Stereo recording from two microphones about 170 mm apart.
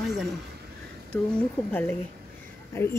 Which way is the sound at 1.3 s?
10° left (ahead or behind).